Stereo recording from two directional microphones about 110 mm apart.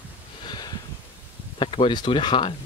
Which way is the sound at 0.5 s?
40° left (ahead or behind).